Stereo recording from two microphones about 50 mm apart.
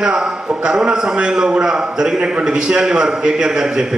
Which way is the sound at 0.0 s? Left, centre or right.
Centre.